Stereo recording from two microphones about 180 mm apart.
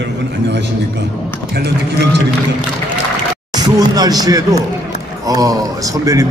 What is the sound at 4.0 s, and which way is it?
A man's voice, 20° right (ahead or behind).